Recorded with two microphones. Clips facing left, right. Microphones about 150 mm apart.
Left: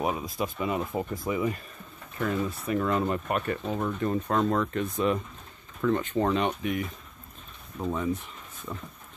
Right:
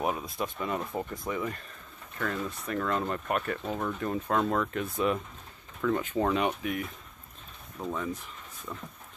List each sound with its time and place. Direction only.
0.0 s speech: centre (ahead or behind)
7.8 s speech: 10° left (ahead or behind)